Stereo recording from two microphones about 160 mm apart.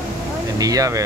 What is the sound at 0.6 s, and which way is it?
Speech, 20° right (ahead or behind).